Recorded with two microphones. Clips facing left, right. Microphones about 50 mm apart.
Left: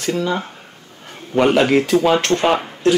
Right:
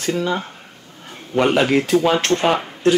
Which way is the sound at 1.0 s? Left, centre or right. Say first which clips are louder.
Left 2 dB; centre.